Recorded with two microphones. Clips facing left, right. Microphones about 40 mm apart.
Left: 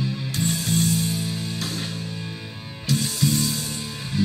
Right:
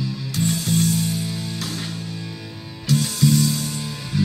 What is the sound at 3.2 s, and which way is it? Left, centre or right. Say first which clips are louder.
Music: right 7 dB; left.